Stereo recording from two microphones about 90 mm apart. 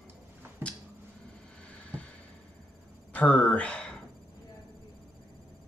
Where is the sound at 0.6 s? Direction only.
20° right (ahead or behind).